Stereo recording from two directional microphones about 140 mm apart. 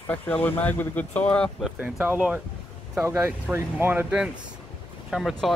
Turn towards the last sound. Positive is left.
turn(degrees=0)  # may be behind; listen again after turning